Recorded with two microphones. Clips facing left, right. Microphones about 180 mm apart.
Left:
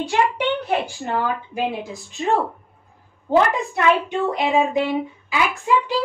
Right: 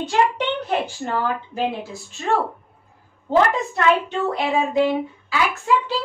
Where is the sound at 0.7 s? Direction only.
15° left (ahead or behind).